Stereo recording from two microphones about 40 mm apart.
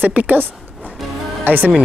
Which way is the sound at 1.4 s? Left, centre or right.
Right.